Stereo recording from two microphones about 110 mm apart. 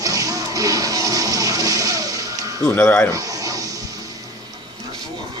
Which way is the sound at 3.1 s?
30° right (ahead or behind).